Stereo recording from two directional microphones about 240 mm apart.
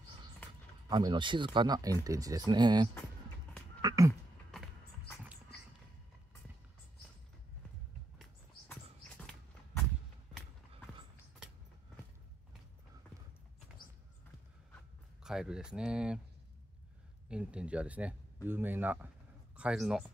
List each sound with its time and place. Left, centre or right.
0.8 s speech: centre
3.8 s a sound: centre
4.5 s clip-clop: centre
8.2 s horse: centre
15.2 s speech: centre
17.3 s speech: centre